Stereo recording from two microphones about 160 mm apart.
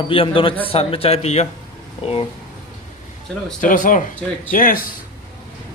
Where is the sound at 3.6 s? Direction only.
55° left (ahead or behind).